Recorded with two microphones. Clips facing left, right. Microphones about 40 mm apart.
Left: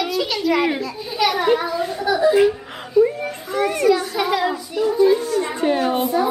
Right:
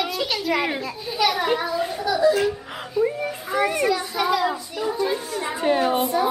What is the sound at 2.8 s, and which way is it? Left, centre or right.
A child's voice, centre.